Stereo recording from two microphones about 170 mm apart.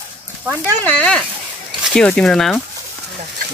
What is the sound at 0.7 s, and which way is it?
Speech, 10° left (ahead or behind).